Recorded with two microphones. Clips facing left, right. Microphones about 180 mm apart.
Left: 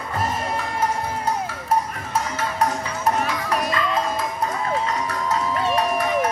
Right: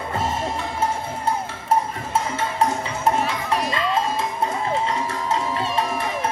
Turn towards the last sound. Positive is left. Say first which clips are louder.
# left 3 dB
turn(degrees=-25)  # may be behind; listen again after turning